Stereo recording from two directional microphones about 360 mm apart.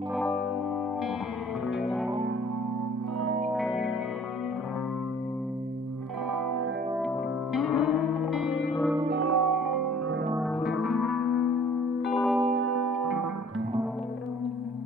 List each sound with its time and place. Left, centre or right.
0.1 s music: centre
1.8 s music: centre
3.5 s music: centre
7.5 s music: centre
9.2 s music: right
10.7 s music: centre
12.6 s music: right